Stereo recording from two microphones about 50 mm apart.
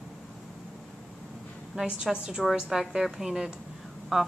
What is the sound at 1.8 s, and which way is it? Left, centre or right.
A woman's voice, centre.